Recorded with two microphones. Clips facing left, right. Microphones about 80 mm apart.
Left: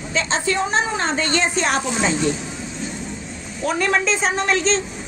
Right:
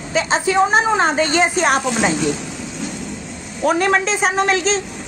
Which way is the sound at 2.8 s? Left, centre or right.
Right.